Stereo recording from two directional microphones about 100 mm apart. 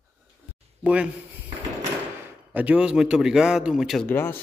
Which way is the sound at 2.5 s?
15° right (ahead or behind).